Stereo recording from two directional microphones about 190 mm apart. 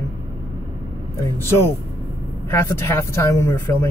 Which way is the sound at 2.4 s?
15° left (ahead or behind).